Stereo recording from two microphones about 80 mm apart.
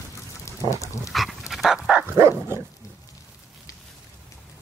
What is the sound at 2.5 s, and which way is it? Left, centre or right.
Dog, right.